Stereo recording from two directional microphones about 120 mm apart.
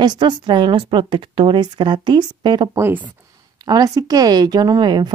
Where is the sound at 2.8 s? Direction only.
15° right (ahead or behind).